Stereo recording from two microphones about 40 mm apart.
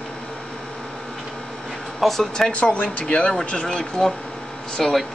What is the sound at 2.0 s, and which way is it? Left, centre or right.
Speech, centre.